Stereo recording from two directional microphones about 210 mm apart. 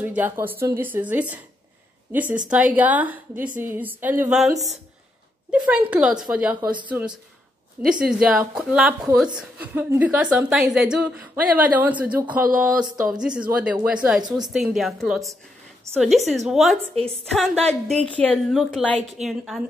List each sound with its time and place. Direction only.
0.0 s a woman's voice: 10° right (ahead or behind)
15.9 s a woman's voice: 15° right (ahead or behind)
16.3 s a woman's voice: centre (ahead or behind)
16.9 s a woman's voice: 30° right (ahead or behind)
17.6 s a woman's voice: 5° left (ahead or behind)